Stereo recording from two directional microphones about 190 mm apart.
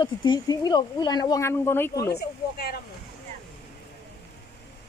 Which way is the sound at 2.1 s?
55° left (ahead or behind).